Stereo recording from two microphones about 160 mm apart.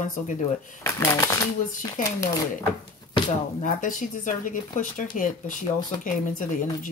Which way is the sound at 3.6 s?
55° left (ahead or behind).